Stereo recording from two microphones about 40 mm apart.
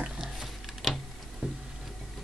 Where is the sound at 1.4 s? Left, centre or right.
Right.